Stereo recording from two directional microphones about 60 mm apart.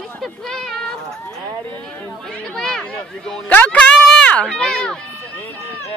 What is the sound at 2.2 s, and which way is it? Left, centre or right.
Speech, centre.